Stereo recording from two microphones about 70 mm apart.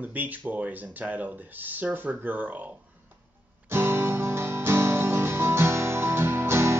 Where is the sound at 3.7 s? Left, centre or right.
Right.